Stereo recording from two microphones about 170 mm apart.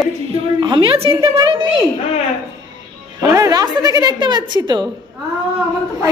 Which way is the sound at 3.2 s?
20° right (ahead or behind).